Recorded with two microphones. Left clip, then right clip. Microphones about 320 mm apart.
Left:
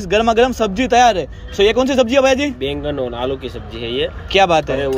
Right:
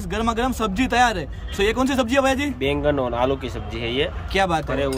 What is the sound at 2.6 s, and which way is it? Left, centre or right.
Speech, centre.